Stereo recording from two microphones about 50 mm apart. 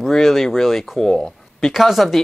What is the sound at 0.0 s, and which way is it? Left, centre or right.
Speech, centre.